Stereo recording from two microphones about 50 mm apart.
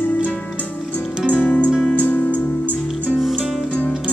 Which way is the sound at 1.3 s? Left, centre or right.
Left.